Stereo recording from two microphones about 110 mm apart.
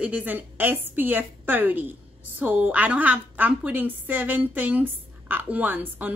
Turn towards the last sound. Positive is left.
turn(degrees=-15)  # may be behind; listen again after turning